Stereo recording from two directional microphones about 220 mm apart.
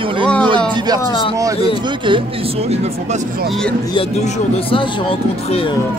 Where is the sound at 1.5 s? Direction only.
25° left (ahead or behind).